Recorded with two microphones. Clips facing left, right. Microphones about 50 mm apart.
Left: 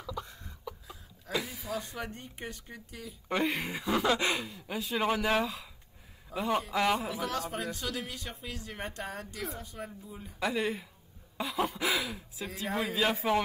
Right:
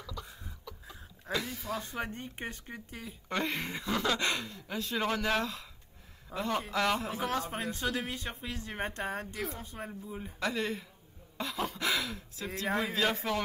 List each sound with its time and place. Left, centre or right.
0.0 s a sound: centre
0.3 s a sound: centre
1.3 s speech: centre
1.8 s speech: right
3.3 s speech: centre
7.2 s speech: right
10.4 s speech: centre